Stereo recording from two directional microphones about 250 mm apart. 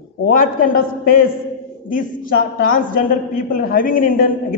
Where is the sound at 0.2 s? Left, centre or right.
Left.